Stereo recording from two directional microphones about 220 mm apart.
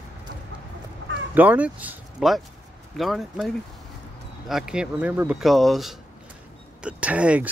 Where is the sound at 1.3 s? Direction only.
5° right (ahead or behind).